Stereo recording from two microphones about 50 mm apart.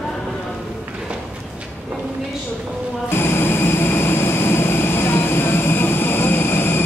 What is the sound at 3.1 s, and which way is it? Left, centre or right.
Vehicle, left.